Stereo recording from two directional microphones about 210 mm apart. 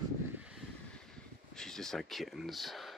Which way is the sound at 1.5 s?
Centre (ahead or behind).